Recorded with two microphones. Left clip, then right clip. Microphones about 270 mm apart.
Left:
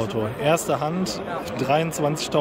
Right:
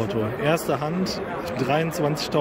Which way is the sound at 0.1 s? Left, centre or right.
Centre.